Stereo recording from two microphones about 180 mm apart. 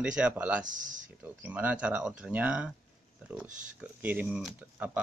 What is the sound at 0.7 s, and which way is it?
Speech, 45° right (ahead or behind).